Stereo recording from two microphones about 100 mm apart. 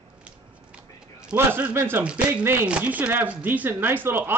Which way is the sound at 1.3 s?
20° right (ahead or behind).